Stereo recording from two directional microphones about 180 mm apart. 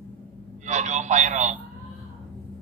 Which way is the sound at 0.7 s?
40° right (ahead or behind).